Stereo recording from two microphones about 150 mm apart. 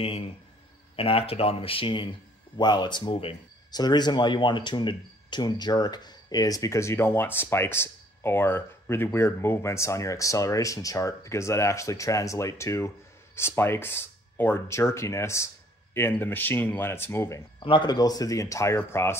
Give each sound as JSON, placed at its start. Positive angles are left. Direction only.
{"t": 0.9, "sound": "speech", "side_deg": 40}
{"t": 17.6, "sound": "speech", "side_deg": 30}